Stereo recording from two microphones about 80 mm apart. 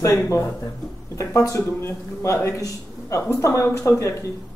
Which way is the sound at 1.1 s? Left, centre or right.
Left.